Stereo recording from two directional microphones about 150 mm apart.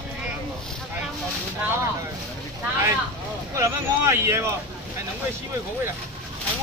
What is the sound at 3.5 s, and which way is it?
Speech, 20° right (ahead or behind).